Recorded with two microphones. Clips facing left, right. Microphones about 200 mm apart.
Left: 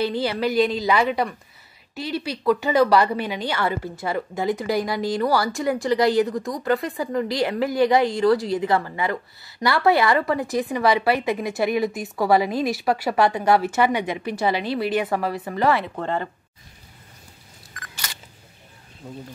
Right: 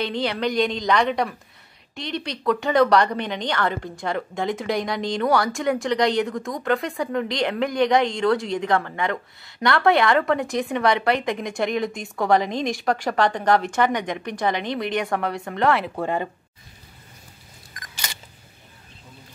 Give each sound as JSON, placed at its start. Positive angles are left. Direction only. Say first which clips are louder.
{"t": 0.0, "sound": "a woman's voice", "louder": "left 2 dB", "side_deg": 5}
{"t": 16.0, "sound": "speech", "louder": "right 1 dB", "side_deg": -15}